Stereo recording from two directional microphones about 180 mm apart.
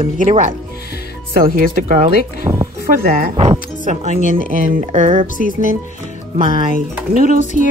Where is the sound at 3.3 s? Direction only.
40° right (ahead or behind).